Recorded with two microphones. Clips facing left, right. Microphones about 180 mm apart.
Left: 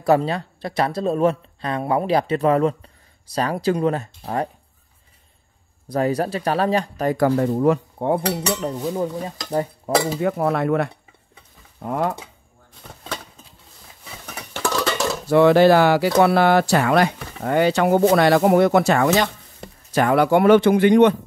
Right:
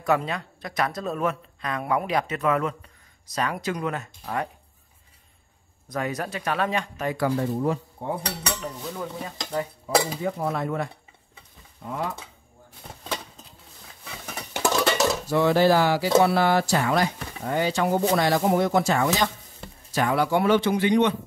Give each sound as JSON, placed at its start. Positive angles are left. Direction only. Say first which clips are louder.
{"t": 0.0, "sound": "speech", "louder": "left 6 dB", "side_deg": 35}
{"t": 5.9, "sound": "speech", "louder": "left 8 dB", "side_deg": 35}
{"t": 8.7, "sound": "speech", "louder": "left 10 dB", "side_deg": 35}
{"t": 9.9, "sound": "speech", "louder": "left 2 dB", "side_deg": 50}
{"t": 10.2, "sound": "speech", "louder": "left 7 dB", "side_deg": 65}
{"t": 11.8, "sound": "speech", "louder": "left 7 dB", "side_deg": 55}
{"t": 14.5, "sound": "a sound", "louder": "even", "side_deg": -15}
{"t": 15.2, "sound": "speech", "louder": "left 8 dB", "side_deg": 70}